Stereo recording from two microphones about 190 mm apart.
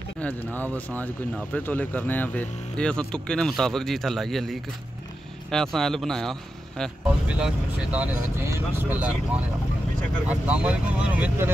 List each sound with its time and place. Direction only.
0.2 s speech: 10° left (ahead or behind); by 9.1 s 10° right (ahead or behind)
10.2 s speech: 5° right (ahead or behind)